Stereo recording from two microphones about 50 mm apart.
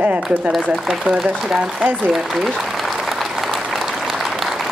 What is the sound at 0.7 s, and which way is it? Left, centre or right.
Speech, centre.